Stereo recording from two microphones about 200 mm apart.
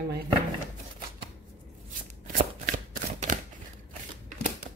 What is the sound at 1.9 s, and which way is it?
Shuffling cards, 40° right (ahead or behind).